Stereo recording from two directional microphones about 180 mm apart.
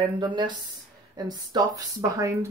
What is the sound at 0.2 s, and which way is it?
Speech, 25° right (ahead or behind).